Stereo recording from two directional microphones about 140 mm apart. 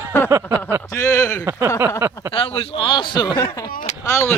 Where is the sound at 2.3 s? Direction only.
40° left (ahead or behind).